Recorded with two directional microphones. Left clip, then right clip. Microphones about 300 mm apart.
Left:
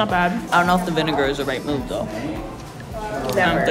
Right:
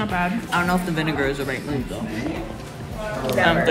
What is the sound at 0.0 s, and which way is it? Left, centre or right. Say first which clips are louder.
Speech: left 5 dB; centre.